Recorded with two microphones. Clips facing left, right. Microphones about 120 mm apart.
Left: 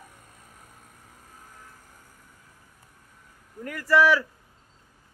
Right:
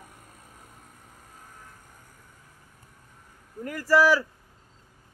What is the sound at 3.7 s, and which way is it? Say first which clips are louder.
Speech: even; 35° right (ahead or behind).